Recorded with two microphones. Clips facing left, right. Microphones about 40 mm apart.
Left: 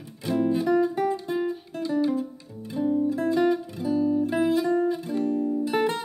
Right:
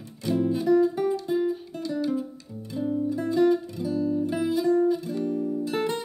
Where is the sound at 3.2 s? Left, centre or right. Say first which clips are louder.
Right 5 dB; left.